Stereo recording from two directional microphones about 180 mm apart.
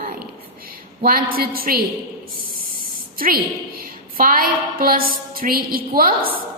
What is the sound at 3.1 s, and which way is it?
A woman's voice, 55° right (ahead or behind).